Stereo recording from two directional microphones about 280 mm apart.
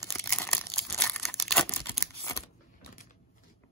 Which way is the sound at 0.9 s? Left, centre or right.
Centre.